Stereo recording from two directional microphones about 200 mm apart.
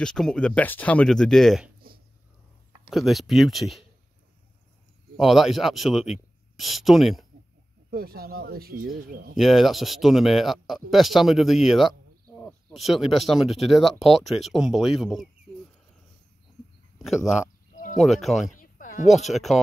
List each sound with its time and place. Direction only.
0.0 s speech: 5° left (ahead or behind)
2.9 s speech: centre (ahead or behind)
5.1 s speech: centre (ahead or behind)
7.9 s speech: 50° right (ahead or behind)
9.4 s speech: centre (ahead or behind)
17.0 s speech: centre (ahead or behind)
18.6 s a sound: 40° left (ahead or behind)
19.0 s speech: centre (ahead or behind)